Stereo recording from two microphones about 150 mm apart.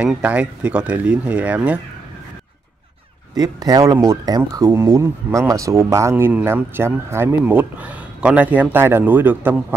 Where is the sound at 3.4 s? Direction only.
25° right (ahead or behind).